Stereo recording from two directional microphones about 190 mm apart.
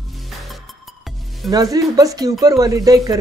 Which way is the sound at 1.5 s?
20° right (ahead or behind).